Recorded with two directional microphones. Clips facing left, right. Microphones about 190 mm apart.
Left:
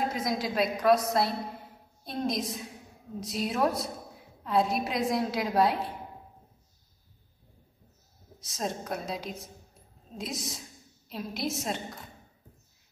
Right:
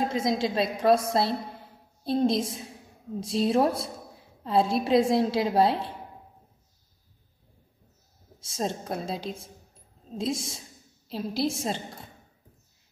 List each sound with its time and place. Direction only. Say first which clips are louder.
0.1 s a woman's voice: right 4 dB; 25° right (ahead or behind)
2.0 s a woman's voice: right 7 dB; 30° right (ahead or behind)
8.4 s a woman's voice: right 3 dB; 30° right (ahead or behind)